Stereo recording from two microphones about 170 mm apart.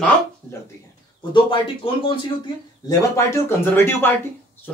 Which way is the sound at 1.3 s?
30° left (ahead or behind).